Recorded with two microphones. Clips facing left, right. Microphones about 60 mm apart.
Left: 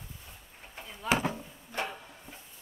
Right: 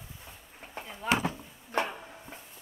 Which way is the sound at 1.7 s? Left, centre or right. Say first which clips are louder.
Right 5 dB; right.